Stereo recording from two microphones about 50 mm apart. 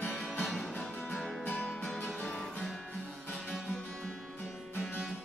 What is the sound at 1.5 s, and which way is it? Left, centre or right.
Music, centre.